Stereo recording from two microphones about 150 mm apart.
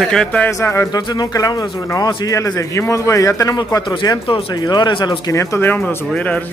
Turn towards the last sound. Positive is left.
turn(degrees=10)  # may be behind; listen again after turning